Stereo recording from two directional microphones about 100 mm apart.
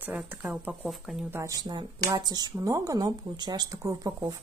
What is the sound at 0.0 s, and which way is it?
Speech, 20° right (ahead or behind).